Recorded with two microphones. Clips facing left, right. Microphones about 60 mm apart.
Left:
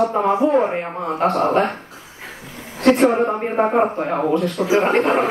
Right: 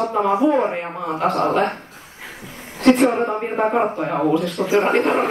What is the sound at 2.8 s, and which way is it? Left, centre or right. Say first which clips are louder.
Speech: left 1 dB; centre.